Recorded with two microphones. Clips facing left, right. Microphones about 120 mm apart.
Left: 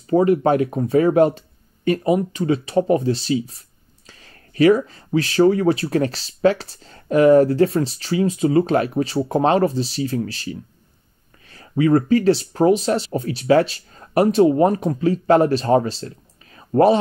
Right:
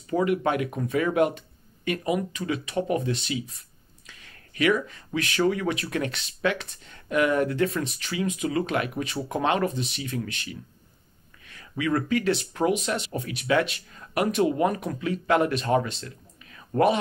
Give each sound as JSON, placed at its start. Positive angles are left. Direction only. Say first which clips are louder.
{"t": 0.0, "sound": "speech", "louder": "left 8 dB", "side_deg": 35}